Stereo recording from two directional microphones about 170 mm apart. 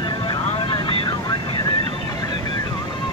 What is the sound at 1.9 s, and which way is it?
Vehicle, 25° left (ahead or behind).